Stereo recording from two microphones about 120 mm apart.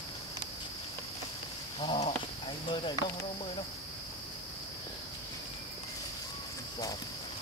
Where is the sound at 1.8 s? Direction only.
55° left (ahead or behind).